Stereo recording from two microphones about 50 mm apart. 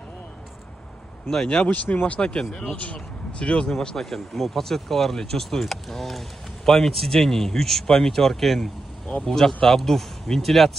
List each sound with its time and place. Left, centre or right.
1.3 s speech: centre
1.7 s speech: left
3.7 s speech: centre